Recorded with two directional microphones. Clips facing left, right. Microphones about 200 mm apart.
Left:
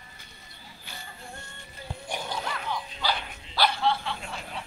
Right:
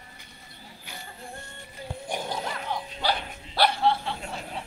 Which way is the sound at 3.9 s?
40° right (ahead or behind).